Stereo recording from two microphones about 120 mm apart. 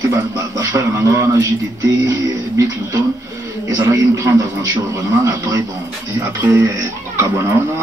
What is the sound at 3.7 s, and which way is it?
Speech, 25° right (ahead or behind).